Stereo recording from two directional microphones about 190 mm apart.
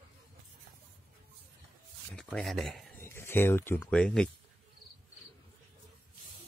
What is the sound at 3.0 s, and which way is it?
Speech, 15° left (ahead or behind).